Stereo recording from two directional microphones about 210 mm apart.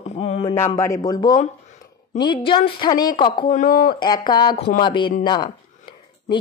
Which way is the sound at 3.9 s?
20° left (ahead or behind).